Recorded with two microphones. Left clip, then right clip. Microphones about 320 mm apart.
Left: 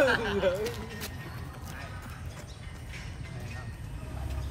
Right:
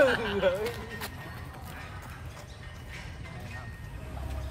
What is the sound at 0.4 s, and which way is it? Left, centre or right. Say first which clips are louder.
Speech: right 1 dB; centre.